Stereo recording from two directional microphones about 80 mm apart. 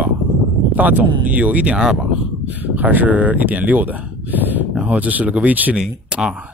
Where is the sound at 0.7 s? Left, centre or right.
Right.